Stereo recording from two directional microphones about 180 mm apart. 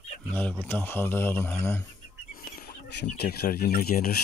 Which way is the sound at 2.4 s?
65° left (ahead or behind).